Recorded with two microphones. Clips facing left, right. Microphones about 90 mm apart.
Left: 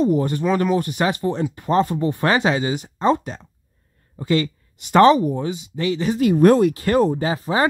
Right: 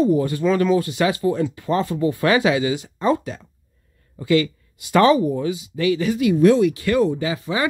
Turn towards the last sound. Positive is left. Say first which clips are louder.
# left 3 dB
turn(degrees=40)  # may be behind; listen again after turning